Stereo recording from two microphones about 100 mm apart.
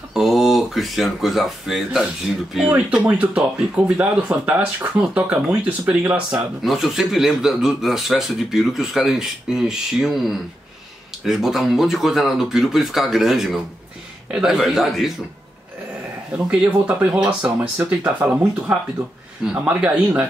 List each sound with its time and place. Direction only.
0.1 s speech: 5° right (ahead or behind)
6.6 s speech: centre (ahead or behind)
16.4 s speech: 15° right (ahead or behind)